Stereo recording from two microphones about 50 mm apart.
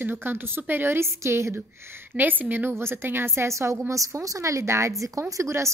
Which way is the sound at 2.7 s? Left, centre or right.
Right.